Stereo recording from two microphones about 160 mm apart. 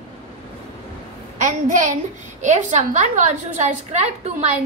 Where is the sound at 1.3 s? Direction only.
50° right (ahead or behind).